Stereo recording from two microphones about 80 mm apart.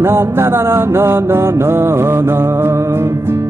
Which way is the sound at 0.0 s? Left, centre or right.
Right.